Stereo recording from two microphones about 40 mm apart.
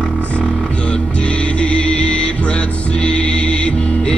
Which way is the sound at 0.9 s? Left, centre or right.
Left.